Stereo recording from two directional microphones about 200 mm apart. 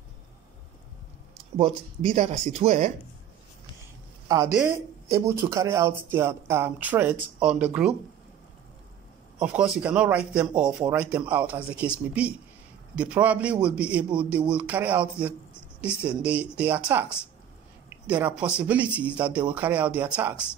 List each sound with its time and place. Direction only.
1.6 s speech: 30° right (ahead or behind)
4.6 s a man's voice: 15° right (ahead or behind)
9.4 s a man's voice: 5° right (ahead or behind)